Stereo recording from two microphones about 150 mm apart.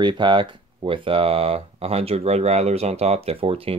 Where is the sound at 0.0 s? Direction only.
30° right (ahead or behind).